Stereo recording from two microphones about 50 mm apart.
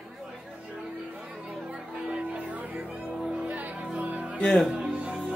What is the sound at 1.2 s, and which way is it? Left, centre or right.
Music, centre.